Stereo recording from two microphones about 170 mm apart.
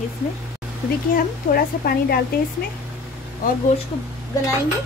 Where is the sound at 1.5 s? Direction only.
60° left (ahead or behind).